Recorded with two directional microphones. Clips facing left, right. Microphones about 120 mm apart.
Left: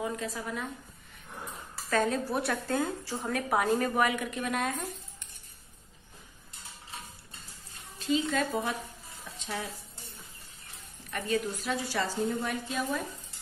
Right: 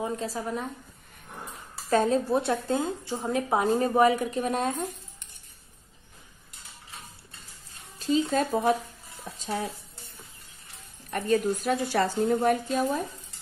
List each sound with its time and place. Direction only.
0.0 s speech: 30° right (ahead or behind)
1.9 s a woman's voice: 30° right (ahead or behind)
8.0 s speech: 35° right (ahead or behind)
11.1 s a woman's voice: 40° right (ahead or behind)